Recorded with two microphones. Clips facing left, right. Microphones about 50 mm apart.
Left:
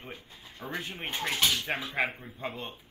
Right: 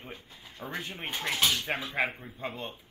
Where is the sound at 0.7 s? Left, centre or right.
Left.